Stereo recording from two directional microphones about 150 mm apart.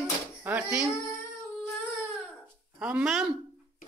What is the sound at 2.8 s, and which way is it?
Speech, 5° right (ahead or behind).